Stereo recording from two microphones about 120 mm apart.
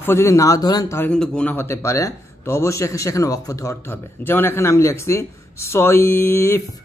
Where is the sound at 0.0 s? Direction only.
20° left (ahead or behind).